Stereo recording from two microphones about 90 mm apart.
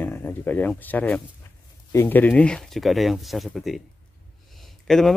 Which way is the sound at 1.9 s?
30° left (ahead or behind).